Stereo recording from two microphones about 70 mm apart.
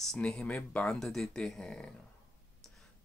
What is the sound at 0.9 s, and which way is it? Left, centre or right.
Speech, centre.